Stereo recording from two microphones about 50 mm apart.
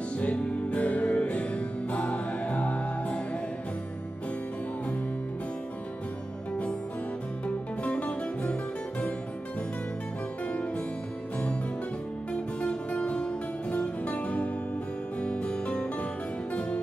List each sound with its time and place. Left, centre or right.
0.2 s music: left
7.4 s music: left
12.6 s music: left